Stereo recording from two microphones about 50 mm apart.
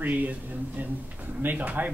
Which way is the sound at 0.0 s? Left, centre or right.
Right.